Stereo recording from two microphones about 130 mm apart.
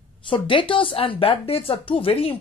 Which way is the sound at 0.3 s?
40° left (ahead or behind).